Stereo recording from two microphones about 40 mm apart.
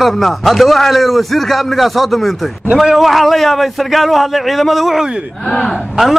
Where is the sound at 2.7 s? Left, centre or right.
Centre.